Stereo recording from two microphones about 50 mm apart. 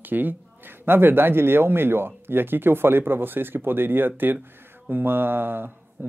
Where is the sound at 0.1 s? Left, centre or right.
Right.